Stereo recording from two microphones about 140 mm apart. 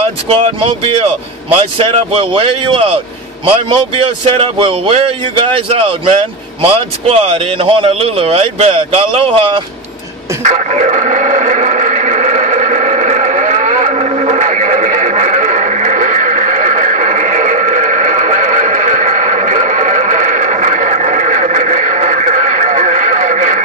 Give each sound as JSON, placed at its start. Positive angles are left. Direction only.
{"t": 0.3, "sound": "speech", "side_deg": -40}
{"t": 10.4, "sound": "music", "side_deg": -60}